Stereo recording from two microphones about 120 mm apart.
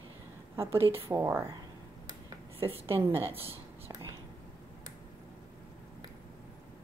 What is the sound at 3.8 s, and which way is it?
Whispering, 25° right (ahead or behind).